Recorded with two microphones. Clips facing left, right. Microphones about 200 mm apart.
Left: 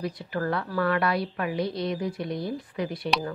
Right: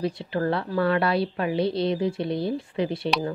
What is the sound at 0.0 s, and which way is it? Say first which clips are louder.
A woman's voice: right 4 dB; 25° right (ahead or behind).